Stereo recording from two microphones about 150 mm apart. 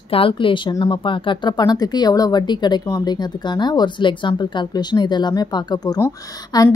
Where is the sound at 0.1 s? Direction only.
35° left (ahead or behind).